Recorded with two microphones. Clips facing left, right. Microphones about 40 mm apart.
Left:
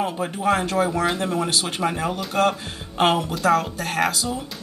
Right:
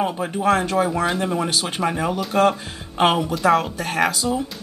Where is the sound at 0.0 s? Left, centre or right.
Centre.